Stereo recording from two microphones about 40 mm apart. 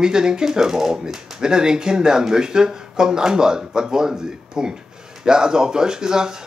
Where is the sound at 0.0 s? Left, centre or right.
Centre.